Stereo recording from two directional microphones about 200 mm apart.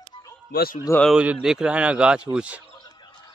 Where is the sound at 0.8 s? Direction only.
10° left (ahead or behind).